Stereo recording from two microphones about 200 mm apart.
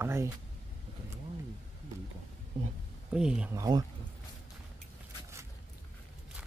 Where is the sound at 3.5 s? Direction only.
15° right (ahead or behind).